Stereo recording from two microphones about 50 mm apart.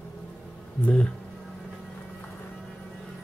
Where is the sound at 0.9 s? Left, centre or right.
Left.